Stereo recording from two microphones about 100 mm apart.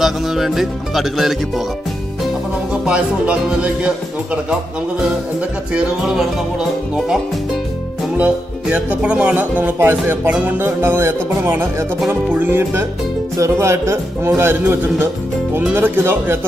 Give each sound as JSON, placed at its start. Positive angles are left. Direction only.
{"t": 0.0, "sound": "music", "side_deg": -5}
{"t": 2.8, "sound": "speech", "side_deg": -10}
{"t": 5.7, "sound": "speech", "side_deg": -5}
{"t": 8.2, "sound": "a man's voice", "side_deg": -10}